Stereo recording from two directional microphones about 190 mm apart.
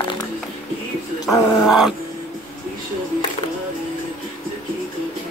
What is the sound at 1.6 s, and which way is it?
Vehicle, centre (ahead or behind).